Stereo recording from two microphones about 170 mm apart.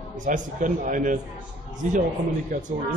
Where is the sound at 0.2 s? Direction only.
50° right (ahead or behind).